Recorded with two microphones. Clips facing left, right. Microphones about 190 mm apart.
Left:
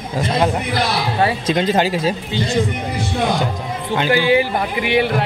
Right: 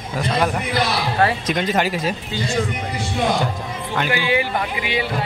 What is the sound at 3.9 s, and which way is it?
Speech, 35° left (ahead or behind).